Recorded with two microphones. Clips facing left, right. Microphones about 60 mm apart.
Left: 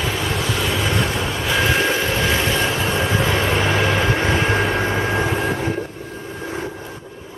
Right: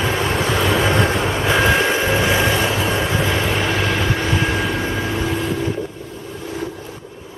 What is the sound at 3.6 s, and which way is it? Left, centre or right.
Vehicle, centre.